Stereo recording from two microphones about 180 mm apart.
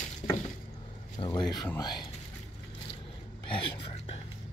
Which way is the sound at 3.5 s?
30° left (ahead or behind).